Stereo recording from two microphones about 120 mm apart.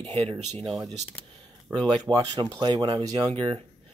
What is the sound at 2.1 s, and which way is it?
Speech, 40° right (ahead or behind).